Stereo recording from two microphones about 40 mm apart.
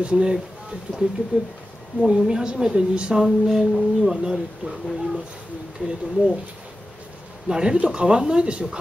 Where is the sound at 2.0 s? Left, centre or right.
Centre.